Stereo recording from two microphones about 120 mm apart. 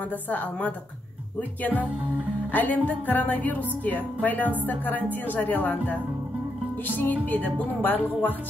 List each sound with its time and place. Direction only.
0.3 s a woman's voice: 15° left (ahead or behind)
2.5 s a woman's voice: 15° left (ahead or behind)
7.0 s a woman's voice: 15° left (ahead or behind)